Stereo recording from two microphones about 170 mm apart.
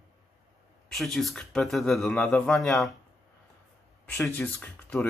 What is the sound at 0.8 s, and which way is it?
Speech, centre (ahead or behind).